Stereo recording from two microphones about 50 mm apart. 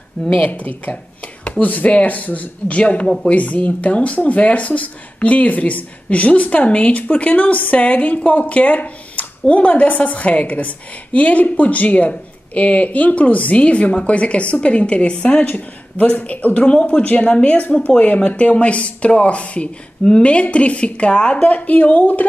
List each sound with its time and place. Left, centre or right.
0.4 s speech: left
15.4 s speech: left